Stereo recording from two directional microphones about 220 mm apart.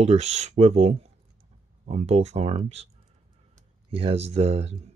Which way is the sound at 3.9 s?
25° right (ahead or behind).